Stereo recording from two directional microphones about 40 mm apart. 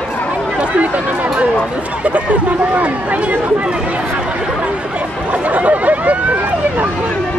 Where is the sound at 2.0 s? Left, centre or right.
Right.